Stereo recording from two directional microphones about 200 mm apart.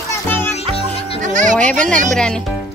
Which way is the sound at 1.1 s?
40° right (ahead or behind).